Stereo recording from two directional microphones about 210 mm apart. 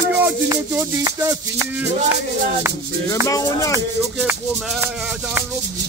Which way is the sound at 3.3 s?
15° left (ahead or behind).